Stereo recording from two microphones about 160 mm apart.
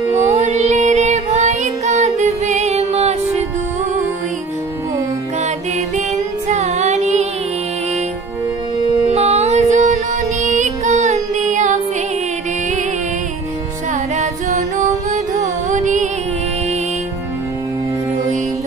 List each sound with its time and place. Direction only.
0.1 s music: 45° right (ahead or behind)
6.5 s music: 45° right (ahead or behind)
9.0 s music: 40° right (ahead or behind)
14.8 s music: 45° right (ahead or behind)